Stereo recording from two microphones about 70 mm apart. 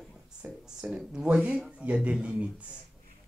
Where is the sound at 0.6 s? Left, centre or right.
Centre.